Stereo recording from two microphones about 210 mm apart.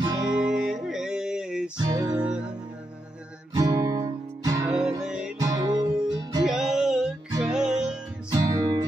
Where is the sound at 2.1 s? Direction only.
5° right (ahead or behind).